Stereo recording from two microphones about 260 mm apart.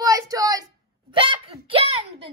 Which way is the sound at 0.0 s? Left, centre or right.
Centre.